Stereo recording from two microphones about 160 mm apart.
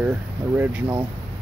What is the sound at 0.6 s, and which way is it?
Speech, 10° right (ahead or behind).